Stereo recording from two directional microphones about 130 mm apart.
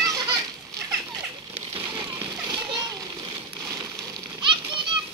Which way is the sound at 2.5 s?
30° right (ahead or behind).